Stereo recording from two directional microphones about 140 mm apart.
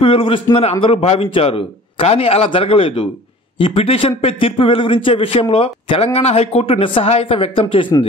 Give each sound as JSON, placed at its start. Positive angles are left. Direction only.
{"t": 0.0, "sound": "a man's voice", "side_deg": 40}
{"t": 7.9, "sound": "speech", "side_deg": 25}